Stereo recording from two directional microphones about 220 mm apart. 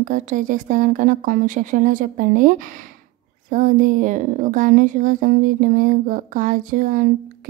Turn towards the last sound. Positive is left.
turn(degrees=-40)  # may be behind; listen again after turning